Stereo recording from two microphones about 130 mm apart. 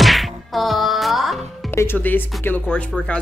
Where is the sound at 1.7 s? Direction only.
20° left (ahead or behind).